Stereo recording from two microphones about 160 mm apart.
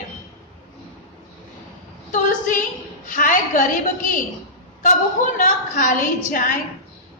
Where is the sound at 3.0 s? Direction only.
55° left (ahead or behind).